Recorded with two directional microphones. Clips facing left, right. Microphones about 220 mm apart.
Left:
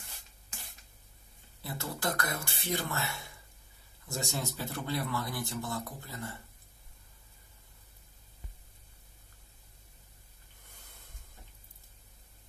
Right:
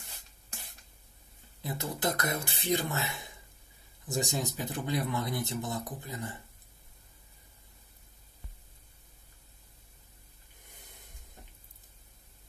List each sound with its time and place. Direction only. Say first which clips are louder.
1.6 s speech: right 3 dB; 20° right (ahead or behind)